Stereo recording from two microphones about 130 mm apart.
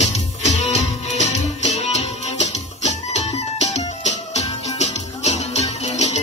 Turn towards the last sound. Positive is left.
turn(degrees=60)  # may be behind; listen again after turning